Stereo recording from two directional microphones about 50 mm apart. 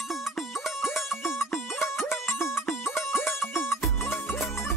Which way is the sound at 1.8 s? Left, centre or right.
Left.